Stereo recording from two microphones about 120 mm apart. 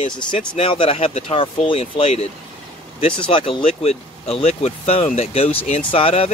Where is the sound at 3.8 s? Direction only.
60° left (ahead or behind).